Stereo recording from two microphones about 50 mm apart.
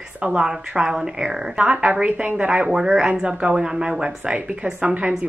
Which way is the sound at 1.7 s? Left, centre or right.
Right.